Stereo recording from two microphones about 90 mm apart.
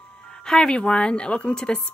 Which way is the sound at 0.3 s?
10° left (ahead or behind).